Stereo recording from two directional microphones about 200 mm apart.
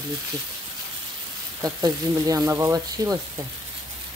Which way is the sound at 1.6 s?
20° right (ahead or behind).